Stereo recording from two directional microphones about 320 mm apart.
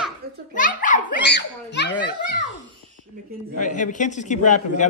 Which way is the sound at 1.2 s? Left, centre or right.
Left.